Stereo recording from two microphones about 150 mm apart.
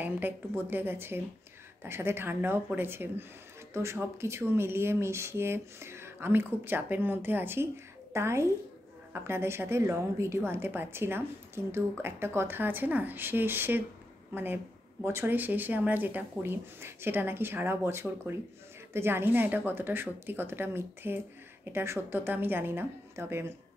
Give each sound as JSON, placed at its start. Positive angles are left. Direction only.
{"t": 0.0, "sound": "speech", "side_deg": -15}